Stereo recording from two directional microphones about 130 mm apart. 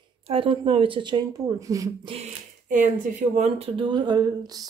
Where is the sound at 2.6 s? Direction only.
85° right; by 3.7 s 65° right (ahead or behind).